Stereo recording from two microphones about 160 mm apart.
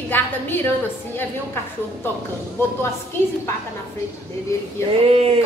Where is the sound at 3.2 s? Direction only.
15° left (ahead or behind).